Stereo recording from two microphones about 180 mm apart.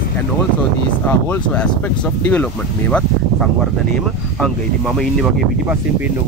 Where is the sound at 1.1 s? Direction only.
5° left (ahead or behind).